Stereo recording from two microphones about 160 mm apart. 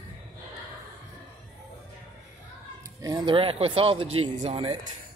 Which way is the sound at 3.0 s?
20° right (ahead or behind).